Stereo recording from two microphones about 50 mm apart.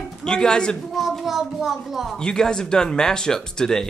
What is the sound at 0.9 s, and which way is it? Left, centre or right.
A child's voice, centre.